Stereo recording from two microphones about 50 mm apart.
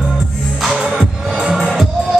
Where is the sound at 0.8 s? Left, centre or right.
Centre.